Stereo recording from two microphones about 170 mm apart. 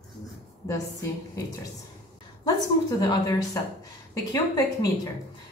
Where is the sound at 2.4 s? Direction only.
25° left (ahead or behind).